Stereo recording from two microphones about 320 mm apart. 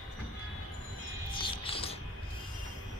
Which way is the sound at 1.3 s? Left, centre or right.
Centre.